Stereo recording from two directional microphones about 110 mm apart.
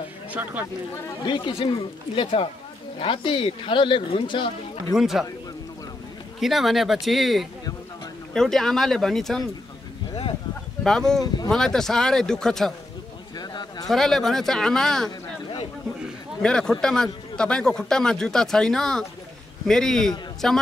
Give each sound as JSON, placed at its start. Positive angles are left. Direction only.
{"t": 0.3, "sound": "speech", "side_deg": -15}
{"t": 1.2, "sound": "speech", "side_deg": 50}
{"t": 3.0, "sound": "speech", "side_deg": 50}
{"t": 4.9, "sound": "speech", "side_deg": 0}
{"t": 6.4, "sound": "speech", "side_deg": 0}
{"t": 10.8, "sound": "speech", "side_deg": 5}
{"t": 13.4, "sound": "a sound", "side_deg": 40}
{"t": 13.8, "sound": "speech", "side_deg": 5}
{"t": 16.4, "sound": "speech", "side_deg": 5}